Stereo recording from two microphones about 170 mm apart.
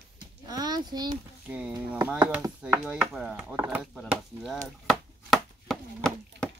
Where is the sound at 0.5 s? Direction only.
25° right (ahead or behind).